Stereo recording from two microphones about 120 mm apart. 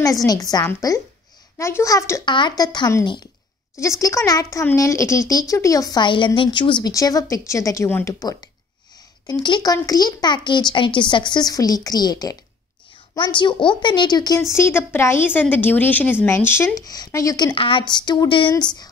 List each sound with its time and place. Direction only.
0.3 s a child's voice: 30° left (ahead or behind)
2.2 s a child's voice: 40° left (ahead or behind)
4.0 s a child's voice: 25° left (ahead or behind); by 6.9 s 40° left (ahead or behind)
6.9 s a child's voice: 30° left (ahead or behind)
14.5 s speech: 20° left (ahead or behind)
17.6 s a child's voice: 45° left (ahead or behind)